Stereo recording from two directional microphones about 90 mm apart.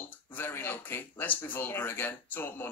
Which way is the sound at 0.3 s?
20° left (ahead or behind).